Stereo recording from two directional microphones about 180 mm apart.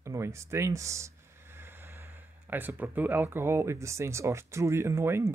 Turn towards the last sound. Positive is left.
turn(degrees=-15)  # may be behind; listen again after turning